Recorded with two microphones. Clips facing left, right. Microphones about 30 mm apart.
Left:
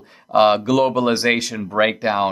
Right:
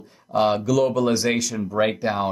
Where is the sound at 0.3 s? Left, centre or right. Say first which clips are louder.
Left 5 dB; left.